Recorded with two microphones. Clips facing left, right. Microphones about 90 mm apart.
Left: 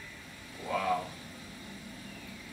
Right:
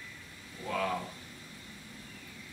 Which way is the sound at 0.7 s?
10° left (ahead or behind).